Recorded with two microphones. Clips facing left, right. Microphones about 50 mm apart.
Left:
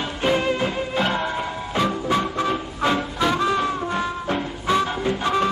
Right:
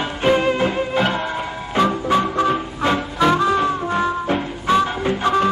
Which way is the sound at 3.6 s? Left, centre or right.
Right.